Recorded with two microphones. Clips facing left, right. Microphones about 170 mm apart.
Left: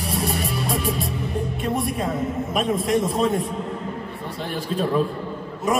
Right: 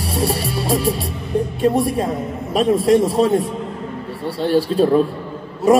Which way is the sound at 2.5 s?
30° right (ahead or behind).